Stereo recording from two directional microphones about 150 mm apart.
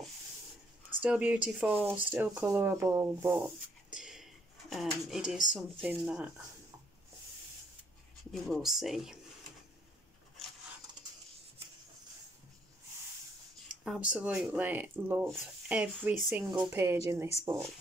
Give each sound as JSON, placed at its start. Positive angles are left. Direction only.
{"t": 1.0, "sound": "speech", "side_deg": -10}
{"t": 3.9, "sound": "a sound", "side_deg": -5}
{"t": 5.5, "sound": "speech", "side_deg": -10}
{"t": 8.3, "sound": "speech", "side_deg": 0}
{"t": 13.8, "sound": "speech", "side_deg": -10}